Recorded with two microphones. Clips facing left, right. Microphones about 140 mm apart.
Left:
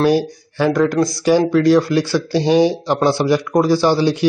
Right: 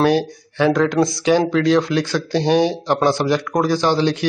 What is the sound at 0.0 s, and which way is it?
A man's voice, 5° left (ahead or behind).